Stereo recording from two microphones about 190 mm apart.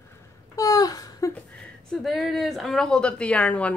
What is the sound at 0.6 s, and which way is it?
Speech, 20° left (ahead or behind).